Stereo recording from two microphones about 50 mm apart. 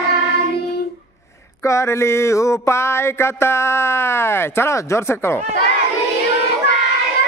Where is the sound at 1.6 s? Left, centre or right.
Left.